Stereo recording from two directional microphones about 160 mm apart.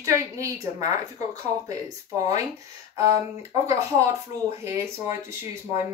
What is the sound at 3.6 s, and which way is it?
Speech, 20° right (ahead or behind).